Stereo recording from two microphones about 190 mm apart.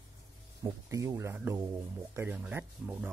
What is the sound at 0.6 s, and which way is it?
Speech, 15° right (ahead or behind).